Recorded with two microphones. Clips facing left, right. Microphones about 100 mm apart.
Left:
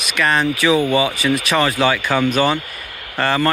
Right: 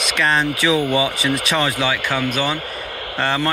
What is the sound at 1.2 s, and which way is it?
Speech, 30° right (ahead or behind).